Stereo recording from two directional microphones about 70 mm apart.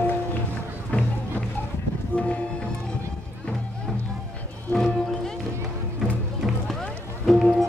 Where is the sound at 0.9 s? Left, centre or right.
Left.